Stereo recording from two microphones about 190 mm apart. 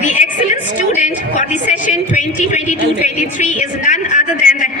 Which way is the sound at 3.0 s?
40° left (ahead or behind).